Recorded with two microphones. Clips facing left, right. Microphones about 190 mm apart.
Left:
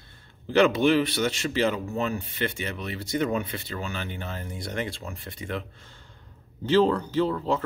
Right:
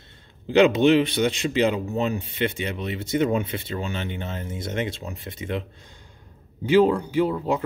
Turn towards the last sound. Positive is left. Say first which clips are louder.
# right 2 dB
turn(degrees=-15)  # may be behind; listen again after turning